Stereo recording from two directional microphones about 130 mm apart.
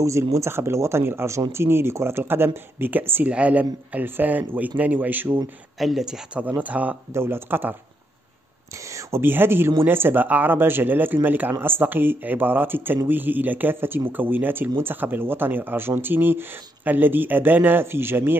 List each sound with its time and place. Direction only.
0.0 s speech: 25° right (ahead or behind)
5.8 s speech: centre (ahead or behind)
8.7 s speech: 25° right (ahead or behind)